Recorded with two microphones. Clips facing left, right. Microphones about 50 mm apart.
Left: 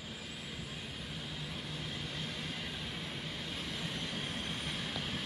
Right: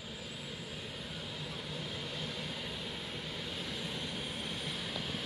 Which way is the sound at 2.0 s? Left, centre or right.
Left.